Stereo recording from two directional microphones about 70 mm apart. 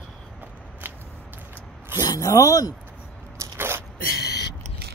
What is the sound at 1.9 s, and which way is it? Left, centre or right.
Speech, left.